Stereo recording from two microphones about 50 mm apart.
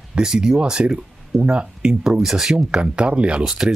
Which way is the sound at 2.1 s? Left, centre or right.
Centre.